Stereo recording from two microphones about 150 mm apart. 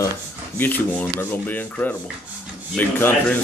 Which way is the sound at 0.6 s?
10° left (ahead or behind).